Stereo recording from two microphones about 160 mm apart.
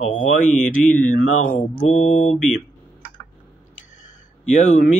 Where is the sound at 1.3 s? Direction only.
50° left (ahead or behind).